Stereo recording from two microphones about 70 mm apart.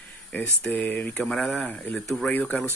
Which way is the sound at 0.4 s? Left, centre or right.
Left.